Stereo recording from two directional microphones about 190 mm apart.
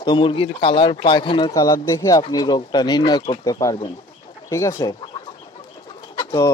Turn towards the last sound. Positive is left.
turn(degrees=15)  # may be behind; listen again after turning